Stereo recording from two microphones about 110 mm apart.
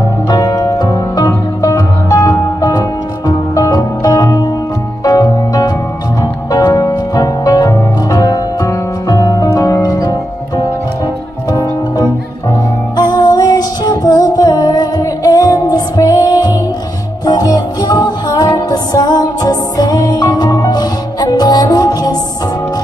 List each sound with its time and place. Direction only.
0.3 s music: 30° left (ahead or behind)
12.9 s music: 40° left (ahead or behind)